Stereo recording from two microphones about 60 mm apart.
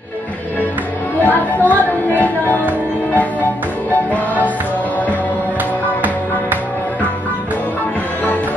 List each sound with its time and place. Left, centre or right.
1.2 s chatter: left
1.8 s music: left